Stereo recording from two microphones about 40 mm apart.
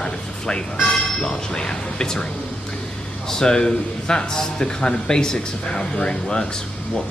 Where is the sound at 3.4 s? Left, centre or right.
Centre.